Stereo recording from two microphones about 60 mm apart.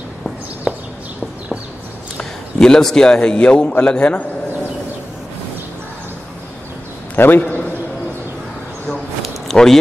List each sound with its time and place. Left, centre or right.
0.7 s horse: centre
2.1 s a man's voice: centre
7.2 s a man's voice: left
9.5 s speech: centre